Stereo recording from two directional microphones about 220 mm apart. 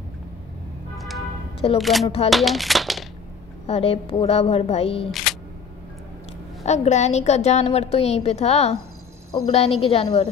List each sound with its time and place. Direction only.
0.9 s a sound: centre (ahead or behind)
1.8 s speech: centre (ahead or behind)
3.6 s a woman's voice: 25° left (ahead or behind)
5.1 s single-lens reflex camera: centre (ahead or behind)
6.6 s a woman's voice: 30° left (ahead or behind)